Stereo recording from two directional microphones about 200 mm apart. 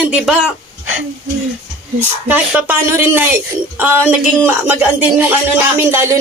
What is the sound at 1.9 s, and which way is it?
Music, 10° right (ahead or behind).